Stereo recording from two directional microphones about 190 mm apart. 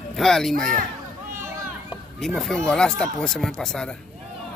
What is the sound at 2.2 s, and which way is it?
Speech, centre (ahead or behind).